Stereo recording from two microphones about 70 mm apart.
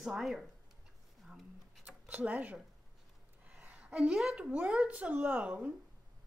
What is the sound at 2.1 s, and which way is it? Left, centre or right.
A woman's voice, right.